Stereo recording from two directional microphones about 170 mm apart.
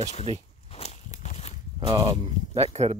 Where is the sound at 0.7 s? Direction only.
40° left (ahead or behind).